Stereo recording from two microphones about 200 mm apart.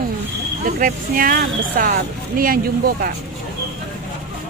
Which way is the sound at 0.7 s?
45° right (ahead or behind).